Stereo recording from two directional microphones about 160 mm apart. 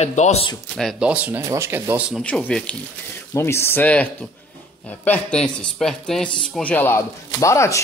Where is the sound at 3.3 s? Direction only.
15° left (ahead or behind).